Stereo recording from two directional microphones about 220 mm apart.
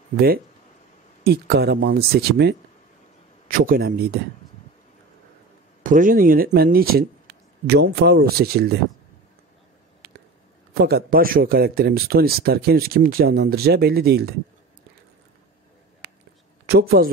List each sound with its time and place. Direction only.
1.2 s speech: 45° right (ahead or behind)
5.9 s speech: 35° right (ahead or behind)
10.7 s speech: 45° right (ahead or behind)
16.0 s a sound: 45° right (ahead or behind)
16.6 s speech: 45° right (ahead or behind)